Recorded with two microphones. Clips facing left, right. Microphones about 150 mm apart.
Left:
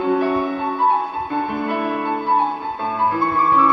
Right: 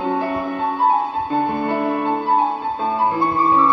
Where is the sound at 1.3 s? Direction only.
25° right (ahead or behind).